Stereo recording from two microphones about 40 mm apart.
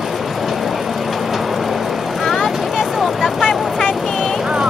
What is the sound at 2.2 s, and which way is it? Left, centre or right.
Vehicle, centre.